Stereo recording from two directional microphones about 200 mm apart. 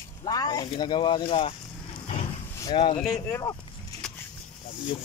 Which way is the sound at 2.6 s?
25° left (ahead or behind).